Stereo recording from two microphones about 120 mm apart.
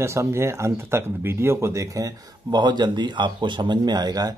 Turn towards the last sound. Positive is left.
turn(degrees=-35)  # may be behind; listen again after turning